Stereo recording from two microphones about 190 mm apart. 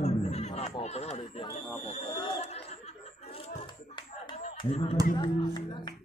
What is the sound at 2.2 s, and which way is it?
Chatter, 35° left (ahead or behind).